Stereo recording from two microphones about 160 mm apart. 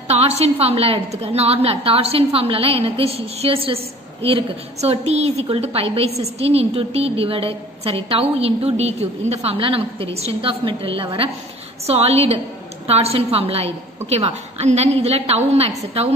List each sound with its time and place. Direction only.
0.1 s a woman's voice: 40° right (ahead or behind)